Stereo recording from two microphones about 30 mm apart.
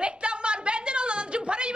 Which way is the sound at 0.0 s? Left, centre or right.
Right.